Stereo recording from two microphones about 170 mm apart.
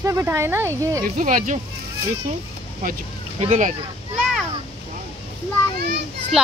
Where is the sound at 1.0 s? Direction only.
50° right (ahead or behind).